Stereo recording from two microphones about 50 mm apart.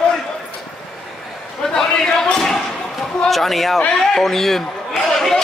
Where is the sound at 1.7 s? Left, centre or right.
Centre.